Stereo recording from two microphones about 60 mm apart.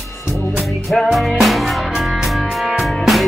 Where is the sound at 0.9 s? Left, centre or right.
Centre.